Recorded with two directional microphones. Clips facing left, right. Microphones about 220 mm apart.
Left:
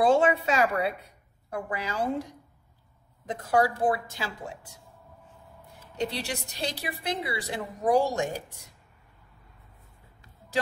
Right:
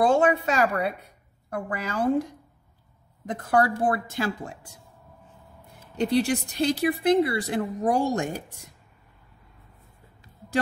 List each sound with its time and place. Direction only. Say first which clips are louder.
0.0 s a woman's voice: right 1 dB; 45° right (ahead or behind)
3.3 s speech: right 2 dB; 55° right (ahead or behind)
5.9 s speech: right 9 dB; 55° right (ahead or behind)